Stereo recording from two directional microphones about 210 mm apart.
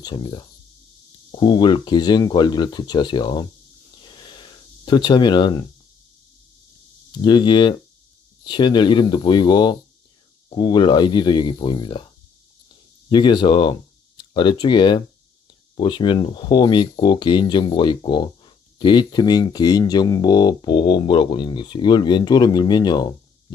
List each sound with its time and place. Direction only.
0.0 s speech: 25° left (ahead or behind)
4.0 s a sound: 20° left (ahead or behind)
7.2 s speech: 20° left (ahead or behind)
13.1 s speech: 20° left (ahead or behind)